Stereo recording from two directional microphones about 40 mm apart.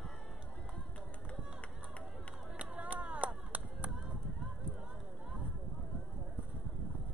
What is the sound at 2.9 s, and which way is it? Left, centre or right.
Chop, right.